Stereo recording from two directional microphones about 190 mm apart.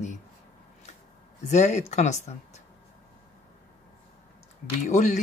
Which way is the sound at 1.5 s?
35° left (ahead or behind).